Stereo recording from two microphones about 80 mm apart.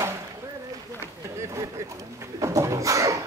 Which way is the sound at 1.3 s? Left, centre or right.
Right.